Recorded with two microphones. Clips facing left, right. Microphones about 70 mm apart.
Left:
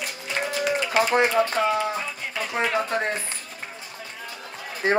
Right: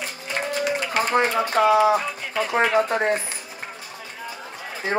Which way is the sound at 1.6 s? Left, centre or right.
Right.